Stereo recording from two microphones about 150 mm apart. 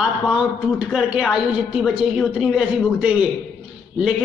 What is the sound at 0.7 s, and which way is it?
A woman's voice, 5° right (ahead or behind).